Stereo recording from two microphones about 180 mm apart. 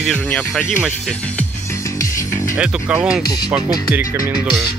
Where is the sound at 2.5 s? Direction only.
5° right (ahead or behind).